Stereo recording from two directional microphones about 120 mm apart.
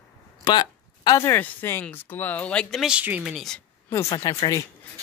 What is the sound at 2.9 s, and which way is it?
Speech, 10° right (ahead or behind).